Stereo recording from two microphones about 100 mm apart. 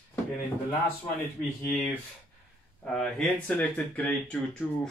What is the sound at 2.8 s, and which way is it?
Speech, 5° left (ahead or behind).